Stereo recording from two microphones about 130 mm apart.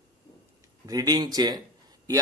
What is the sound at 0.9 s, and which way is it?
Speech, 30° right (ahead or behind).